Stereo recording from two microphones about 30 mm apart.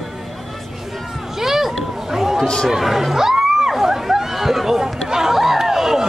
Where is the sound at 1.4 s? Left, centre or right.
Centre.